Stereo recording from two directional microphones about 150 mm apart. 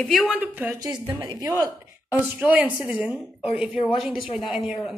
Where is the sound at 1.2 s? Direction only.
25° right (ahead or behind).